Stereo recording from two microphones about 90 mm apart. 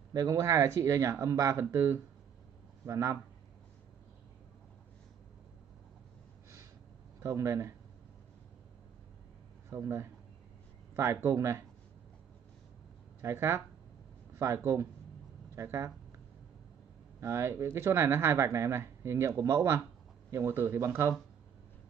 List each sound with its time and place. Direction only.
0.1 s speech: 40° right (ahead or behind)
7.2 s speech: 30° right (ahead or behind)
9.7 s speech: 30° right (ahead or behind)
13.2 s speech: 30° right (ahead or behind)
17.2 s speech: 30° right (ahead or behind)